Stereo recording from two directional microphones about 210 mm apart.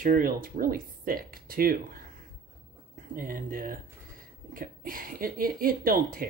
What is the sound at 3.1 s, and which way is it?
Speech, 40° right (ahead or behind).